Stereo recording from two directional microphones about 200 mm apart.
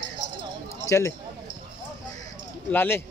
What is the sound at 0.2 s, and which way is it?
Clip-clop, 60° left (ahead or behind).